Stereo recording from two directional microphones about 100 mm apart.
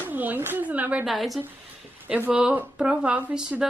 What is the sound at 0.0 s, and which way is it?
Speech, 20° right (ahead or behind).